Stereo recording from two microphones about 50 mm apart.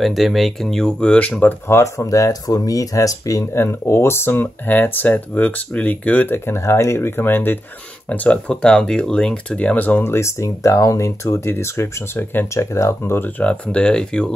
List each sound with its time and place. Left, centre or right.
0.0 s speech: centre; by 1.5 s left
1.7 s speech: left
4.6 s speech: left
6.3 s speech: left
7.1 s speech: left
8.1 s speech: left
9.8 s speech: left
10.0 s speech: left
11.5 s speech: left
12.5 s speech: left
13.4 s speech: left